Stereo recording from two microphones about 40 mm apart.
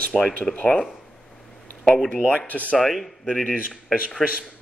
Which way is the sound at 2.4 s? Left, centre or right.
Left.